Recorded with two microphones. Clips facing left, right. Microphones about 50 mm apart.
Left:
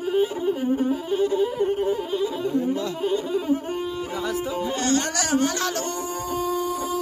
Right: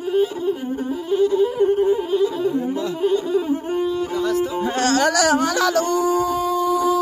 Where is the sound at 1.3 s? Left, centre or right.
Centre.